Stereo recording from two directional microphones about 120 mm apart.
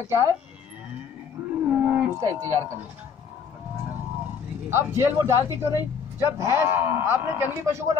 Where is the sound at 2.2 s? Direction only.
25° right (ahead or behind).